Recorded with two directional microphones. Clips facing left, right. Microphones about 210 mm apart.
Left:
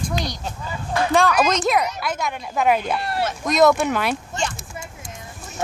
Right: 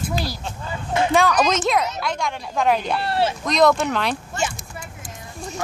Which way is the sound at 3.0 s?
30° right (ahead or behind).